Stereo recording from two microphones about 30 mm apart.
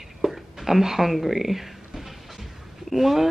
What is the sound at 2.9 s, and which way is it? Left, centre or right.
Speech, centre.